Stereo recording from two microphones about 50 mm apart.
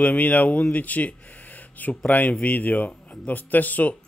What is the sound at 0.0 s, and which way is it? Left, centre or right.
A man's voice, left.